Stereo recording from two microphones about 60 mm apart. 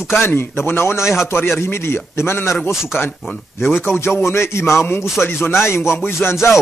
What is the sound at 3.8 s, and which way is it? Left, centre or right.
Speech, left.